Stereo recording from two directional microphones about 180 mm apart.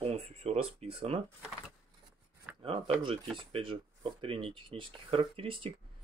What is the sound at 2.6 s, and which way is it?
Speech, 30° right (ahead or behind).